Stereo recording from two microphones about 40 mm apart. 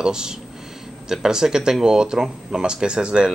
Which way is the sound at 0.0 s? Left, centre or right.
Centre.